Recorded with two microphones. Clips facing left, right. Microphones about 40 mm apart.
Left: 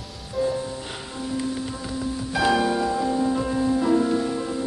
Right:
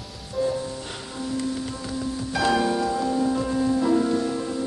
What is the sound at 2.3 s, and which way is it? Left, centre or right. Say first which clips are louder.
Music: left 1 dB; centre.